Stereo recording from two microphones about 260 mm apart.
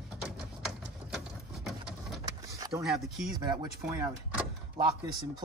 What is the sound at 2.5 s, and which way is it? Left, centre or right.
Vehicle, centre.